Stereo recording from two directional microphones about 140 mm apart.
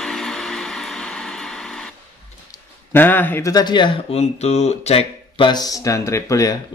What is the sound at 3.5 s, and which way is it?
Speech, 30° left (ahead or behind).